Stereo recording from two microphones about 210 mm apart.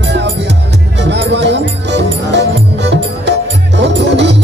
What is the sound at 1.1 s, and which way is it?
Music, 55° right (ahead or behind).